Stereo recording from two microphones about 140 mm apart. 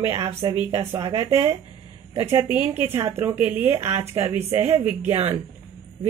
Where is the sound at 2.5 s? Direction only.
15° right (ahead or behind).